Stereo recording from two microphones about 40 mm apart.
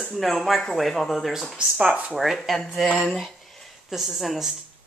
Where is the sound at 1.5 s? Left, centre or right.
Right.